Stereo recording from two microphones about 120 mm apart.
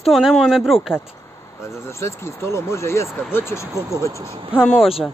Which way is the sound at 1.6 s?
20° left (ahead or behind).